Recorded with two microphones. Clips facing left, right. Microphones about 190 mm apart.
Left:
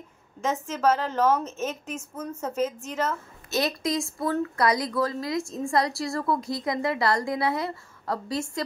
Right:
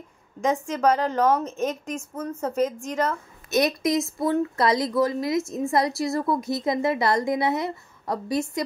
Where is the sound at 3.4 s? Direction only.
20° right (ahead or behind).